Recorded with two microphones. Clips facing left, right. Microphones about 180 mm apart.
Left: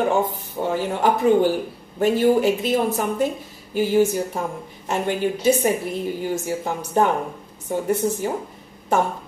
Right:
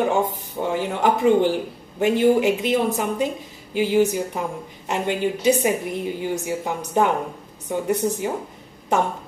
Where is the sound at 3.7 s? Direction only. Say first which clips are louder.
Left 1 dB; 15° right (ahead or behind).